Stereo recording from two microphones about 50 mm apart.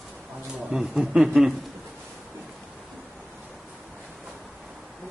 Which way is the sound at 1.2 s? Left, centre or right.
Centre.